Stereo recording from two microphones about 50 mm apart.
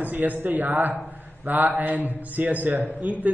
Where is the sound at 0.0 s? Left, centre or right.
Right.